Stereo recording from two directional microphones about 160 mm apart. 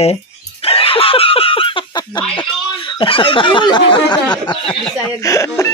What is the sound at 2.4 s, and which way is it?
Speech, 30° left (ahead or behind).